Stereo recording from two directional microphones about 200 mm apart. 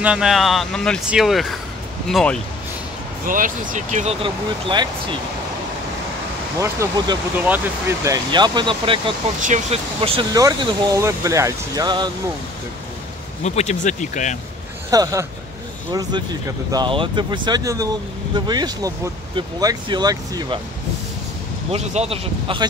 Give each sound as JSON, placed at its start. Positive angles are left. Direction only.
{"t": 0.0, "sound": "speech", "side_deg": -5}
{"t": 3.3, "sound": "speech", "side_deg": -40}
{"t": 6.6, "sound": "speech", "side_deg": -15}
{"t": 10.4, "sound": "speech", "side_deg": -15}
{"t": 13.4, "sound": "speech", "side_deg": 35}
{"t": 14.9, "sound": "speech", "side_deg": -15}
{"t": 21.7, "sound": "speech", "side_deg": -30}